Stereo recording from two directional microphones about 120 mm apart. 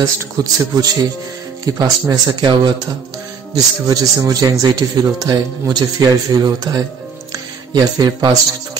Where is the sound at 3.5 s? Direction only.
30° right (ahead or behind).